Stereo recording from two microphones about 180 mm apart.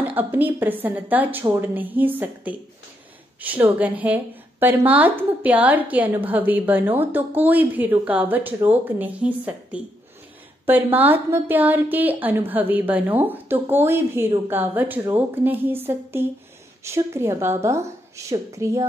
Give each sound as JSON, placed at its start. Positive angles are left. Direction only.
{"t": 0.1, "sound": "a woman's voice", "side_deg": -10}